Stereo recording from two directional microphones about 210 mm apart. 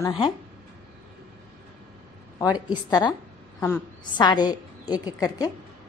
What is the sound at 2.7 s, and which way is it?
A woman's voice, 20° left (ahead or behind).